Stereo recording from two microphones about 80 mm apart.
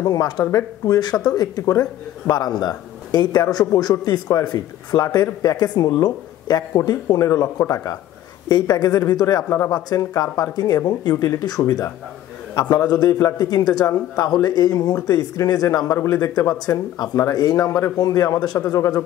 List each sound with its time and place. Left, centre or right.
0.0 s a man's voice: left
8.5 s a man's voice: left
18.8 s speech: left